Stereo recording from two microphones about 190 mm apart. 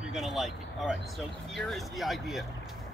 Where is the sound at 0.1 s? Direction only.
Centre (ahead or behind).